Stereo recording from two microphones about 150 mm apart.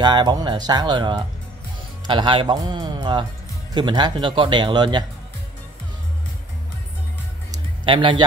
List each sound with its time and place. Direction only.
0.0 s speech: 30° right (ahead or behind)
7.8 s speech: 35° right (ahead or behind)